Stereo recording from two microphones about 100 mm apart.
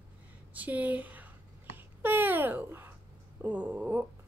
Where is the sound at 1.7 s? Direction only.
20° right (ahead or behind).